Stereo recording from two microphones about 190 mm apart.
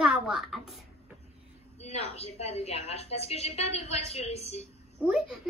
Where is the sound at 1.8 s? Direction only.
35° left (ahead or behind).